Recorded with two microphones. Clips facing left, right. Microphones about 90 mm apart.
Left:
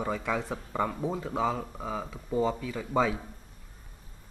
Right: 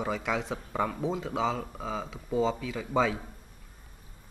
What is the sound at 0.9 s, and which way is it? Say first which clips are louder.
Speech: right 1 dB; 10° left (ahead or behind).